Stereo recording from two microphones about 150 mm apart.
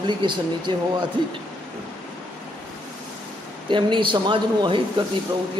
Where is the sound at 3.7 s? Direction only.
35° right (ahead or behind).